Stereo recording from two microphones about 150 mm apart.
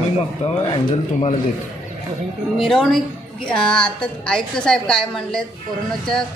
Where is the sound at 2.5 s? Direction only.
Centre (ahead or behind).